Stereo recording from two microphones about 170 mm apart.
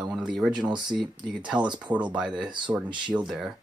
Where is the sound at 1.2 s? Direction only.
5° right (ahead or behind).